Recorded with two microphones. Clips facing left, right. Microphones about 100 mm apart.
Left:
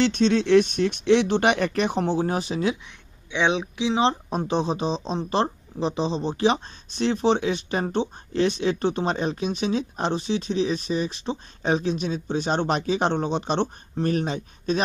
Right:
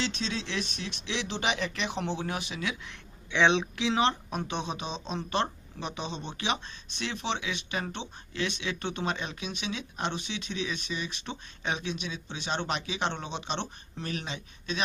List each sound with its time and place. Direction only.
0.0 s speech: 55° left (ahead or behind); by 2.8 s 35° left (ahead or behind)
3.3 s speech: 10° left (ahead or behind)
4.0 s speech: 30° left (ahead or behind)